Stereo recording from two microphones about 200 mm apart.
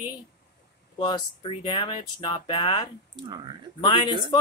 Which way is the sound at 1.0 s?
20° left (ahead or behind).